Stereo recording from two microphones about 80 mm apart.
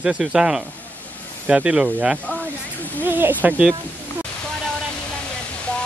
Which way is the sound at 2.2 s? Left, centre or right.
Centre.